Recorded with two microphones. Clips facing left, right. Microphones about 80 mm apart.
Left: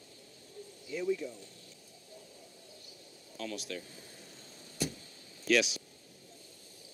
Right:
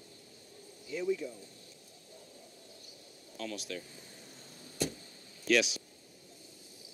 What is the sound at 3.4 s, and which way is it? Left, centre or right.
Speech, centre.